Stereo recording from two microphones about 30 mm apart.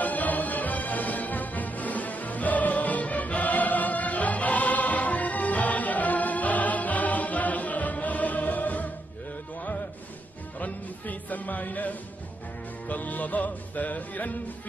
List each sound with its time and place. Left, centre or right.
0.0 s music: left
10.6 s music: left